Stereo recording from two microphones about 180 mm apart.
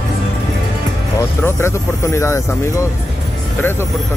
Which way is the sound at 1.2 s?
15° left (ahead or behind).